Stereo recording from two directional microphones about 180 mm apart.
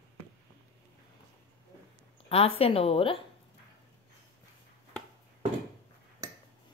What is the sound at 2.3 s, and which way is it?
Speech, 35° left (ahead or behind).